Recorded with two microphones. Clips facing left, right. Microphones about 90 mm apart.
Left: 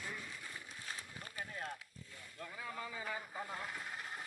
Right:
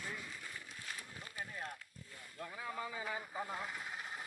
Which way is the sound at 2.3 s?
20° right (ahead or behind).